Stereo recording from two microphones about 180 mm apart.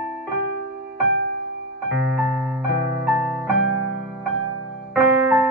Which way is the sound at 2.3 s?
5° right (ahead or behind).